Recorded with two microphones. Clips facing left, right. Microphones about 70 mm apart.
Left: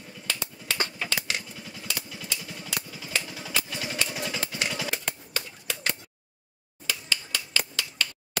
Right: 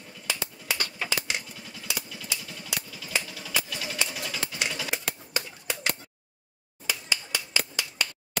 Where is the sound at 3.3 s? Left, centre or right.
Left.